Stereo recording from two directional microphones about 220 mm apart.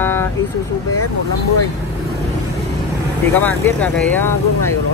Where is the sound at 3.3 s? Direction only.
5° left (ahead or behind).